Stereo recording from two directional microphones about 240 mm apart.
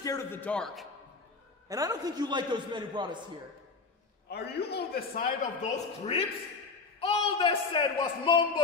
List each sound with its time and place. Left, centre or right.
0.0 s a man's voice: centre
1.7 s a man's voice: centre
4.3 s a man's voice: left